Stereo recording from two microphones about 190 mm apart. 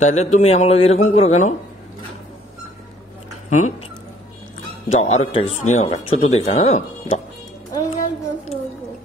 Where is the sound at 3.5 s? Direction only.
40° left (ahead or behind).